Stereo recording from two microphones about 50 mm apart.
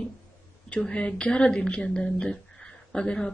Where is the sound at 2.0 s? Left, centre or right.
Centre.